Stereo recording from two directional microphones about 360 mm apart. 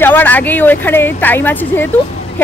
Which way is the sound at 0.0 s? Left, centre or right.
Centre.